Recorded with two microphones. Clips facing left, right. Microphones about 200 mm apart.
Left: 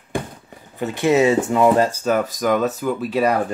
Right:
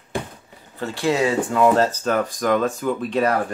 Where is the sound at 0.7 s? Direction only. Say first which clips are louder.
Left 4 dB; 20° left (ahead or behind).